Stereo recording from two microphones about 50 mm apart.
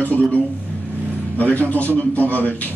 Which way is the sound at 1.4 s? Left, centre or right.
Left.